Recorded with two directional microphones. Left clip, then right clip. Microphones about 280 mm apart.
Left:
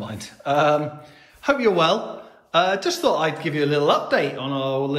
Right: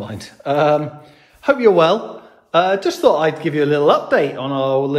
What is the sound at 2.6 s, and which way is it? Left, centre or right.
A man's voice, centre.